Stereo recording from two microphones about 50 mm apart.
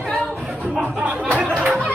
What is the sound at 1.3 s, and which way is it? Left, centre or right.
Music, centre.